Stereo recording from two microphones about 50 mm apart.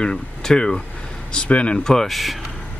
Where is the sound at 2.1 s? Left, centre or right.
Centre.